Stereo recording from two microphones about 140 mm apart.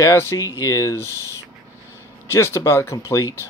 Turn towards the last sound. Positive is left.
turn(degrees=20)  # may be behind; listen again after turning